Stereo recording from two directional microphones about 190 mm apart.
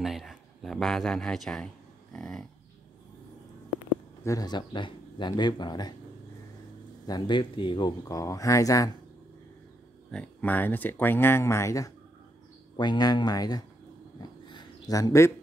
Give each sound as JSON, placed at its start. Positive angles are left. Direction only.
{"t": 0.0, "sound": "a sound", "side_deg": 0}
{"t": 2.1, "sound": "livestock", "side_deg": 0}
{"t": 4.2, "sound": "speech", "side_deg": 20}
{"t": 7.1, "sound": "speech", "side_deg": 25}
{"t": 10.1, "sound": "speech", "side_deg": 5}
{"t": 14.4, "sound": "a sound", "side_deg": 20}